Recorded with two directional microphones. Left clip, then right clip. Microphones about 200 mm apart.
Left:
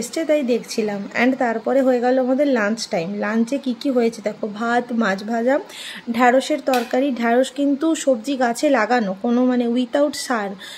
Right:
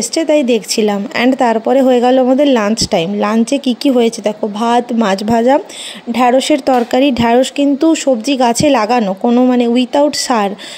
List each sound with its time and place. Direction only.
0.1 s speech: 30° right (ahead or behind)